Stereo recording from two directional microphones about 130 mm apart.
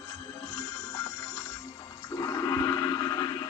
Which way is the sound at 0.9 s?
25° left (ahead or behind).